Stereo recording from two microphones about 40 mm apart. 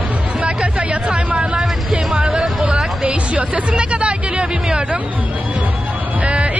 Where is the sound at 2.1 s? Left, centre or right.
Right.